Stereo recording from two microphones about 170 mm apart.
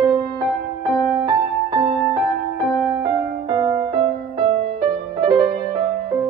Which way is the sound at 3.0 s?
25° right (ahead or behind).